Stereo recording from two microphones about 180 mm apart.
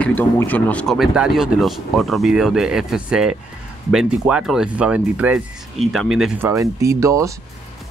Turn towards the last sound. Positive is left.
turn(degrees=-15)  # may be behind; listen again after turning